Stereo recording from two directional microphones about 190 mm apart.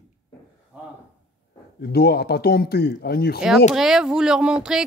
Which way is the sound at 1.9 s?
55° left (ahead or behind).